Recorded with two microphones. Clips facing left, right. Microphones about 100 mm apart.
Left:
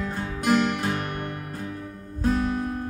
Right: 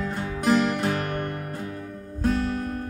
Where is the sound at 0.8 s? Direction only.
40° right (ahead or behind).